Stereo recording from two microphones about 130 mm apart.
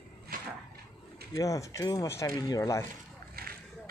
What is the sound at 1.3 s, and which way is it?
Speech, 25° left (ahead or behind).